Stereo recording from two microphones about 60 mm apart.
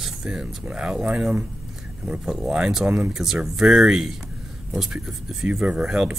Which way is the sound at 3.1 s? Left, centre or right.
Centre.